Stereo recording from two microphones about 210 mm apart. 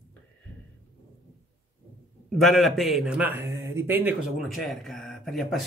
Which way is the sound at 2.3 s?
Centre (ahead or behind).